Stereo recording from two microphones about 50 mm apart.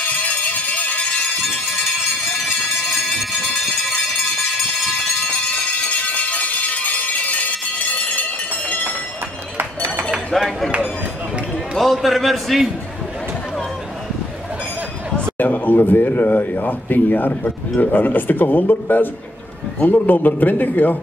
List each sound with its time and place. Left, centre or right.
0.6 s music: left
5.9 s music: left
8.2 s a sound: left
10.3 s a sound: centre
11.8 s a man's voice: centre
15.3 s a man's voice: left